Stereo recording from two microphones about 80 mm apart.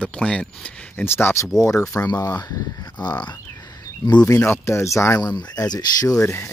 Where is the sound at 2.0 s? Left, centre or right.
Left.